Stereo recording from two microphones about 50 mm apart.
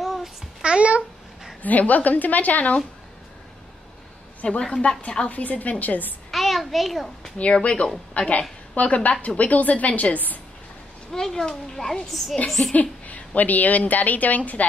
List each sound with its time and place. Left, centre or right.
0.0 s babbling: centre
0.6 s a child's voice: right
1.6 s a woman's voice: left
4.4 s a child's voice: centre
5.3 s a woman's voice: left
6.3 s a child's voice: centre
7.3 s a woman's voice: left
11.1 s a child's voice: centre
12.7 s a woman's voice: left